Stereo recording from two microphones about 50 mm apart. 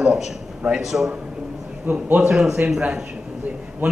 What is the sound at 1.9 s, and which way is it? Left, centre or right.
Speech, right.